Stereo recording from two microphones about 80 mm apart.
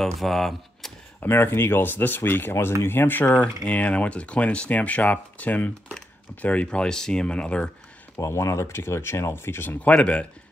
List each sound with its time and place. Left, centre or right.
0.0 s speech: centre
1.2 s speech: left; by 7.7 s centre
8.2 s speech: left
9.8 s speech: centre